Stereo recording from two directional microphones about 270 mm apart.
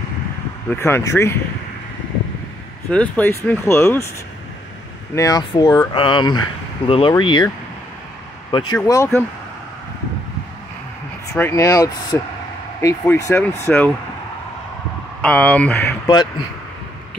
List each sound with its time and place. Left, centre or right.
0.7 s speech: centre
2.9 s speech: centre
5.1 s speech: centre
11.3 s speech: centre
15.2 s speech: centre